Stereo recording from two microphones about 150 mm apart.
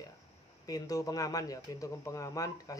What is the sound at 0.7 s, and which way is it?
Speech, 25° left (ahead or behind).